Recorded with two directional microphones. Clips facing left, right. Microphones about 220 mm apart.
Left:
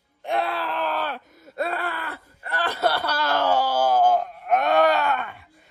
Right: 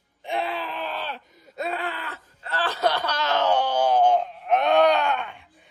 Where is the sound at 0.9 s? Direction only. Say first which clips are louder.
Left 5 dB; 50° left (ahead or behind).